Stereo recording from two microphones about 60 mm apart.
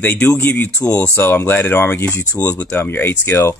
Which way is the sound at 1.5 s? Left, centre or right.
Left.